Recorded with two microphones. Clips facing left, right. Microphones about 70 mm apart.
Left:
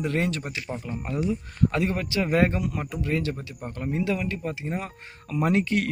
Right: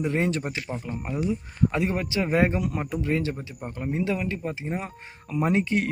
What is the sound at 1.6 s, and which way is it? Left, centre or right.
Speech, right.